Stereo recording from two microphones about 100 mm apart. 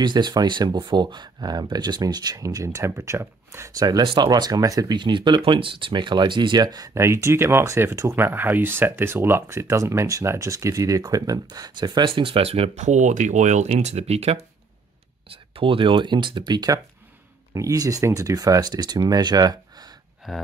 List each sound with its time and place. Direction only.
0.0 s speech: 45° right (ahead or behind)
12.1 s speech: 65° right (ahead or behind)
13.7 s speech: 90° right
15.2 s speech: 65° right (ahead or behind); by 19.9 s 40° right (ahead or behind)
20.2 s speech: centre (ahead or behind)